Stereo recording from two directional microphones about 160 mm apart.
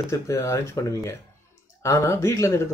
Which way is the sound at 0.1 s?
20° left (ahead or behind).